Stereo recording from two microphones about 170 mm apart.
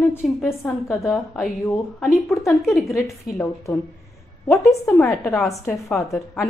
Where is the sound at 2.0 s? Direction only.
Centre (ahead or behind).